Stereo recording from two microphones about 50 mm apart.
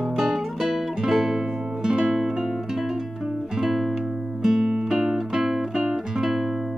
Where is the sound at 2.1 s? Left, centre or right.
Centre.